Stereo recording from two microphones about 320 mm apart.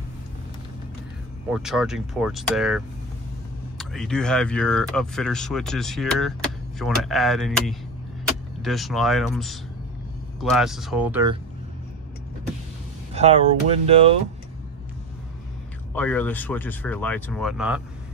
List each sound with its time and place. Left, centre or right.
1.5 s speech: centre
13.1 s speech: centre
15.9 s speech: centre